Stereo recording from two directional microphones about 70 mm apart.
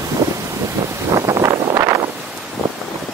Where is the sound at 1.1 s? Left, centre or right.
Right.